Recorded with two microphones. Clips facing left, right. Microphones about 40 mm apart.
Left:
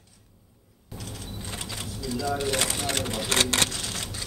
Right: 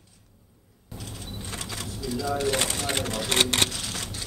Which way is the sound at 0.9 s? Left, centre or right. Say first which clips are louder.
Left 1 dB; centre.